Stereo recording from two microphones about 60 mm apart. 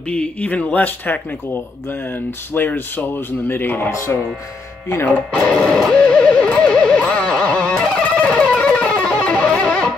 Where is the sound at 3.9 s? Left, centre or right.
Left.